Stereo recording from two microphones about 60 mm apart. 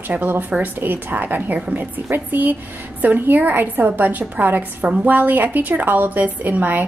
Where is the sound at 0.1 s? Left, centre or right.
Right.